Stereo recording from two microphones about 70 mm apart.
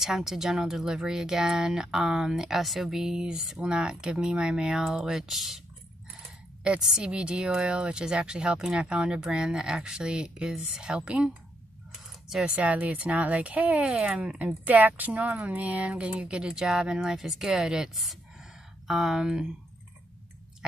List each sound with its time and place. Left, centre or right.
0.0 s speech: centre
12.4 s speech: centre